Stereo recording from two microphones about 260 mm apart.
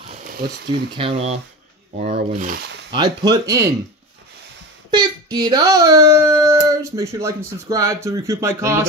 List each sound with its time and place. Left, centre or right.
0.0 s a sound: right
0.9 s speech: right
2.9 s a child's voice: centre
4.9 s a child's voice: centre